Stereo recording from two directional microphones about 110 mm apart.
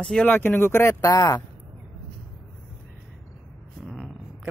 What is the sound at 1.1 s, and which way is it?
Speech, 35° left (ahead or behind).